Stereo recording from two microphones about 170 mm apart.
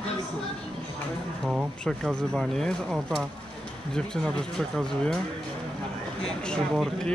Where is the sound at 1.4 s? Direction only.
Centre (ahead or behind).